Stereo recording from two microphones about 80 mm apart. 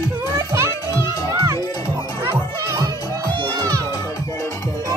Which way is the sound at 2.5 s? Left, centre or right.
Right.